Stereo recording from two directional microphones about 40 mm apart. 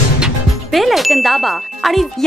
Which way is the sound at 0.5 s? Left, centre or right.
Centre.